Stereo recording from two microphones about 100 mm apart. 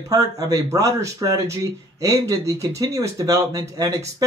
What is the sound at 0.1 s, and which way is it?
Speech, 35° right (ahead or behind).